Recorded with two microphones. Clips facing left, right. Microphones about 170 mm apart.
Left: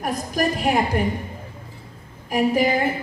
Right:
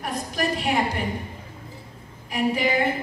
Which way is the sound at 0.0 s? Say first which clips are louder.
Left 4 dB; 45° left (ahead or behind).